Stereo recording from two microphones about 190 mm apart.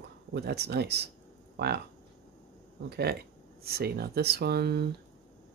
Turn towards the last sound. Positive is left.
turn(degrees=-55)  # may be behind; listen again after turning